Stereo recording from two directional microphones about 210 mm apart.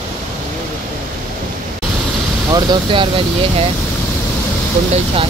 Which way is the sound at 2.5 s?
20° right (ahead or behind).